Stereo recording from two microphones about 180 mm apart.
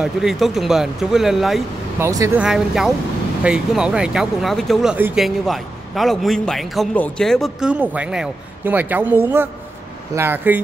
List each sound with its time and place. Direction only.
0.0 s a man's voice: centre (ahead or behind)
2.0 s speech: 15° right (ahead or behind)
2.4 s a man's voice: 5° right (ahead or behind)